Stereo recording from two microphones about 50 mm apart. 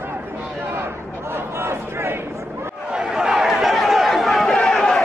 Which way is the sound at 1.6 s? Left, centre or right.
Right.